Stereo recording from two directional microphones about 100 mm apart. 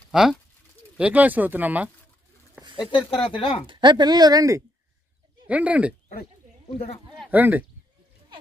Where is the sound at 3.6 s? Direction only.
45° right (ahead or behind).